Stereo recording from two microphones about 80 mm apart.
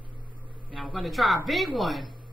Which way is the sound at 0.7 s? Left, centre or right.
Centre.